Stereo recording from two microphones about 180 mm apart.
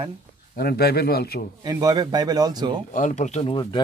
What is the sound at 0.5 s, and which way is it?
Speech, 60° left (ahead or behind).